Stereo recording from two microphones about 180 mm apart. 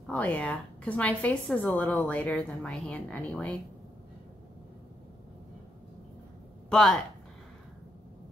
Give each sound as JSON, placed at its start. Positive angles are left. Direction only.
{"t": 0.0, "sound": "a woman's voice", "side_deg": 5}
{"t": 6.7, "sound": "speech", "side_deg": 5}